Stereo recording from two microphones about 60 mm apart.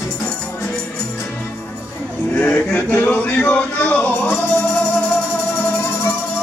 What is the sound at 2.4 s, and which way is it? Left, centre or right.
Music, left.